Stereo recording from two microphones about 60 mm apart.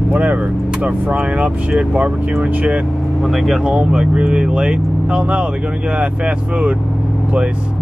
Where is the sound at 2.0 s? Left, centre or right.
Right.